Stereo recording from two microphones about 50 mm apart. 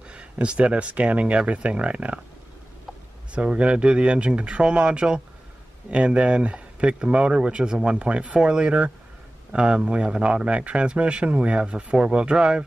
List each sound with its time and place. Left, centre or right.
0.1 s a man's voice: right
3.3 s a man's voice: right